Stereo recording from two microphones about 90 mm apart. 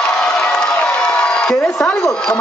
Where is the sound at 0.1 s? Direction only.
5° left (ahead or behind).